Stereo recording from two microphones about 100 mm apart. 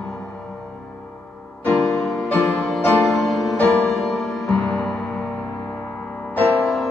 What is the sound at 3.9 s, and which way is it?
Music, centre (ahead or behind).